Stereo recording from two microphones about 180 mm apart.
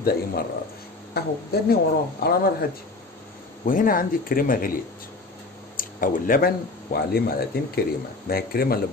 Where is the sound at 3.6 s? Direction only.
50° left (ahead or behind).